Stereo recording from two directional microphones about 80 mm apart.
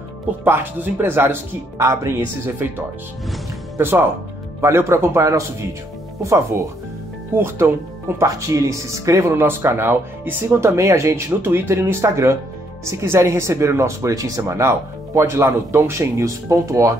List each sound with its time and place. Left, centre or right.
0.4 s speech: right
3.7 s speech: right